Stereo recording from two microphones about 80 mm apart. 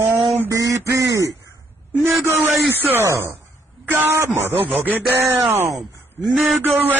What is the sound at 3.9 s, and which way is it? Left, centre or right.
Speech, right.